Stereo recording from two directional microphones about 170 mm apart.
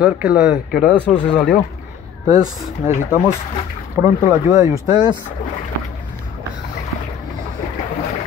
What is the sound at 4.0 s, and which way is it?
Speech, 15° right (ahead or behind).